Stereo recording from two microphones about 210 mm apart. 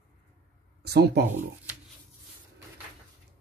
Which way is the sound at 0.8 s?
50° right (ahead or behind).